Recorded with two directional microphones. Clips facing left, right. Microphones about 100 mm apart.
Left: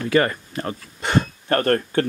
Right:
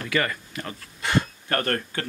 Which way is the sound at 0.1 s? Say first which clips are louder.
Left 7 dB; 35° left (ahead or behind).